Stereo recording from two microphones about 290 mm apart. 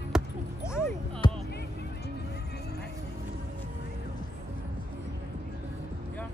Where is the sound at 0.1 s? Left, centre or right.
Centre.